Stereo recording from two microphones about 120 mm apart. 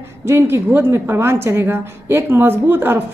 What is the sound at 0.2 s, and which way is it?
A woman's voice, 20° right (ahead or behind).